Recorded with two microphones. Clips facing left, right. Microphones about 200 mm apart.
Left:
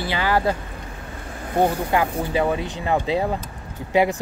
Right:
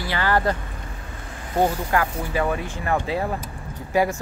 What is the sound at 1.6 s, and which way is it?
Speech, 20° left (ahead or behind).